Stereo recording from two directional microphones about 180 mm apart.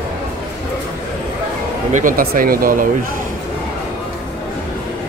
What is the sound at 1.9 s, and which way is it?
Speech, 50° right (ahead or behind).